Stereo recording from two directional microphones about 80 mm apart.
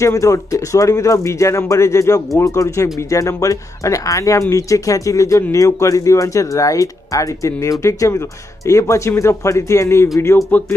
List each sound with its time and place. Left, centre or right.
0.0 s speech: left